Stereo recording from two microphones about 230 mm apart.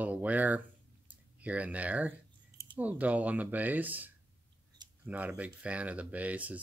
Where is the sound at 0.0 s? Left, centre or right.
Centre.